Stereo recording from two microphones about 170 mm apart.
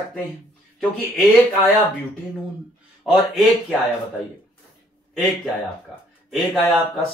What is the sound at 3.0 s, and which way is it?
Speech, 5° right (ahead or behind).